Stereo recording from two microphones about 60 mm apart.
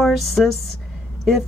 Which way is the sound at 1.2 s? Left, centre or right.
Centre.